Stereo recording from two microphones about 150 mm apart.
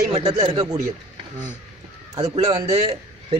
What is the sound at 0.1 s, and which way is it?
Speech, 30° right (ahead or behind).